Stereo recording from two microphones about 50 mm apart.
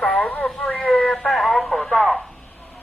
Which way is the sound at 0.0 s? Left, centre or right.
Left.